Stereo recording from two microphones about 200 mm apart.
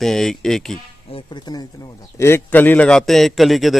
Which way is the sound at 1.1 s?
25° left (ahead or behind).